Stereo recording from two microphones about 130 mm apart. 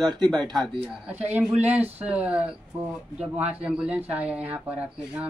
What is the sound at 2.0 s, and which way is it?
Speech, 10° right (ahead or behind).